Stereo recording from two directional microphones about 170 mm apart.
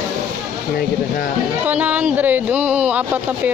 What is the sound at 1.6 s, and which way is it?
Speech, 10° right (ahead or behind).